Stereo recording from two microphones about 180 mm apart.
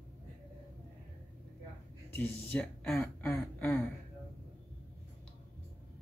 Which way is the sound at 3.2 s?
10° left (ahead or behind).